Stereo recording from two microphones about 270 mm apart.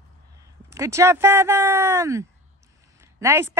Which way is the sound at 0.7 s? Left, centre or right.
Centre.